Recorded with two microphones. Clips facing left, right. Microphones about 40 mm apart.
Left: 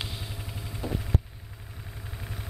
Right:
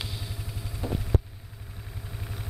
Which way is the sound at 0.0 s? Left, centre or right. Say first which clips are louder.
Even; centre.